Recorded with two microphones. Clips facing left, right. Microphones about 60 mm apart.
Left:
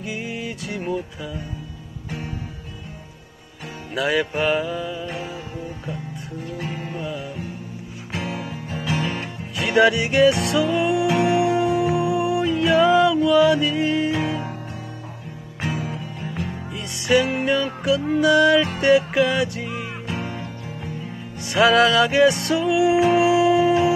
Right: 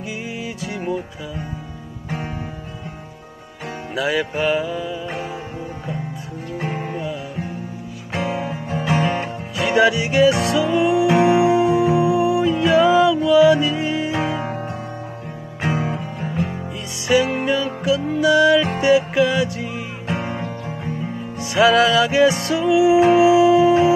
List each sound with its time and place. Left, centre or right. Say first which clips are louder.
0.0 s music: right 1 dB; centre
3.9 s music: even; centre
6.6 s music: right 7 dB; right
6.9 s music: right 3 dB; centre
8.1 s music: right 6 dB; right
9.6 s music: right 1 dB; centre
11.8 s music: right 4 dB; centre
15.6 s guitar: right 5 dB; right
17.1 s music: right 1 dB; centre
20.1 s music: right 6 dB; right
21.4 s music: right 1 dB; centre